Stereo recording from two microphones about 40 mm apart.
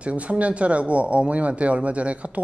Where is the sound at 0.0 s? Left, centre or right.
Right.